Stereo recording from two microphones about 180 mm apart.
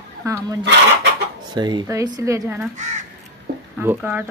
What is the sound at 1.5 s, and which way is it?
Speech, 25° right (ahead or behind).